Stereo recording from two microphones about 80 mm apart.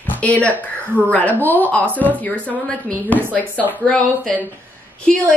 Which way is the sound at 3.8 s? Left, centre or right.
Centre.